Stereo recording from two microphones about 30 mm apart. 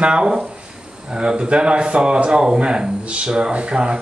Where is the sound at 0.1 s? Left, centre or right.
Right.